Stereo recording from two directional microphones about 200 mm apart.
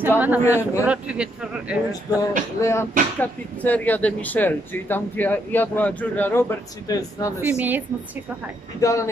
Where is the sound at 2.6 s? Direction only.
15° left (ahead or behind).